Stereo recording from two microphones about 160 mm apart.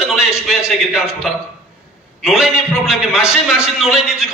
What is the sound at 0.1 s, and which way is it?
A man's voice, 5° right (ahead or behind).